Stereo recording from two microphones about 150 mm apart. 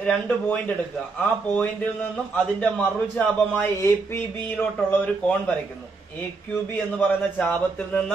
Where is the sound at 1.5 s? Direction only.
10° left (ahead or behind).